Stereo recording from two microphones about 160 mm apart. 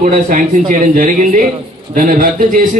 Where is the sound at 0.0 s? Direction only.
55° right (ahead or behind).